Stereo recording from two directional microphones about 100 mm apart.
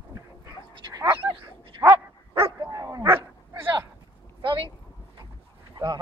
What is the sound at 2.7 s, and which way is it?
Dog, 40° right (ahead or behind).